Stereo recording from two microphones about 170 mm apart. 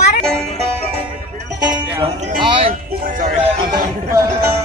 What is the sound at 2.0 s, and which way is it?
Music, 40° right (ahead or behind).